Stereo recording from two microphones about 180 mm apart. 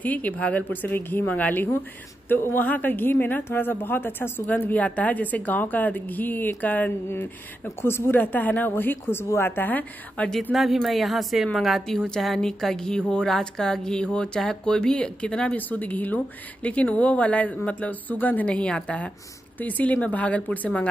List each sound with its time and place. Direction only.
0.0 s speech: 10° left (ahead or behind)